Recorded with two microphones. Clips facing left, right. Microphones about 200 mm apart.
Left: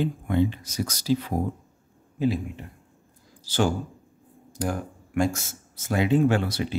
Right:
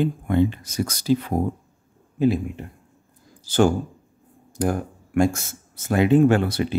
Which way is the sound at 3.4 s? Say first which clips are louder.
Right 6 dB; 50° right (ahead or behind).